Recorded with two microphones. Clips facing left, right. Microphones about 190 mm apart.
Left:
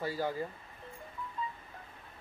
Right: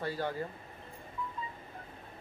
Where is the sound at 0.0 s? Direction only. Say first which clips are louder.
Left 1 dB; 5° left (ahead or behind).